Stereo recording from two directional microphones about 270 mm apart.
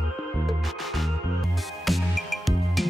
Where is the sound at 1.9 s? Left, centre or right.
Centre.